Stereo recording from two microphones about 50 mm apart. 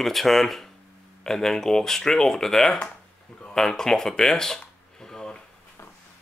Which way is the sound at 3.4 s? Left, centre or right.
Centre.